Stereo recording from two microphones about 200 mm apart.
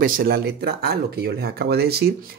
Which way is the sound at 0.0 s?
50° right (ahead or behind).